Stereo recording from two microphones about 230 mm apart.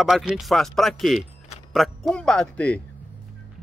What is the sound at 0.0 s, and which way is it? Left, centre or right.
Speech, centre.